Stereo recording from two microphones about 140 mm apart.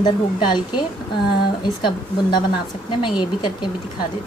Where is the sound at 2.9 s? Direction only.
35° left (ahead or behind).